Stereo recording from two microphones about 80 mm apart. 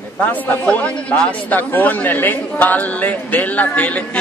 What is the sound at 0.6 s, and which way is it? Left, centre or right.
A man's voice, centre.